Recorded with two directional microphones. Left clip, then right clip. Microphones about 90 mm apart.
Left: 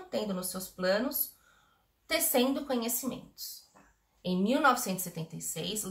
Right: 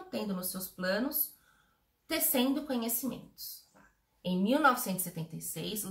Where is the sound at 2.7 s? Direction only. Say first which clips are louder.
Left 2 dB; 20° left (ahead or behind).